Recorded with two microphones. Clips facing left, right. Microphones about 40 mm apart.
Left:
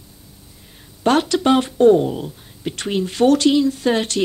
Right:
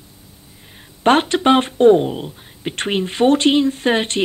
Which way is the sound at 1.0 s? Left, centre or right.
Right.